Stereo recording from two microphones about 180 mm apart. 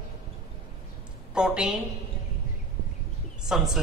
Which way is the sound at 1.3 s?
5° right (ahead or behind).